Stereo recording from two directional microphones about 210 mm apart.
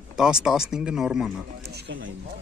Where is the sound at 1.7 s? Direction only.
60° right (ahead or behind).